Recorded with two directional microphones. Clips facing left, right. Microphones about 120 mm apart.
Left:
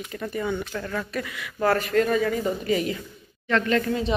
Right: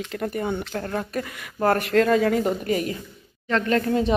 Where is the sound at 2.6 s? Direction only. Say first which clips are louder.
Even; 45° right (ahead or behind).